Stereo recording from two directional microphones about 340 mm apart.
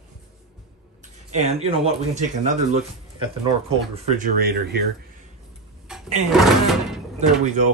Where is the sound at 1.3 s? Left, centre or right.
Centre.